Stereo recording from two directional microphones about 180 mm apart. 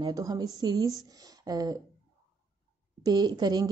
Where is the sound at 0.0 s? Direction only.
20° right (ahead or behind).